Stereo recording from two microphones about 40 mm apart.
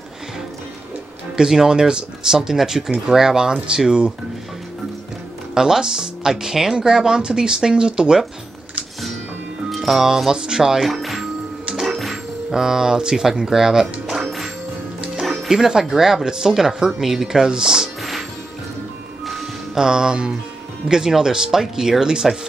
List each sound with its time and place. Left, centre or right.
1.3 s speech: centre
5.5 s speech: centre
9.7 s speech: centre
10.9 s music: centre
12.5 s speech: centre
14.2 s music: centre
15.5 s speech: centre
19.2 s music: centre
19.8 s speech: centre